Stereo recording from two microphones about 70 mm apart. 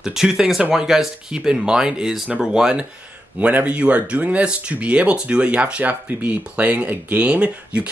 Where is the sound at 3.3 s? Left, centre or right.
Right.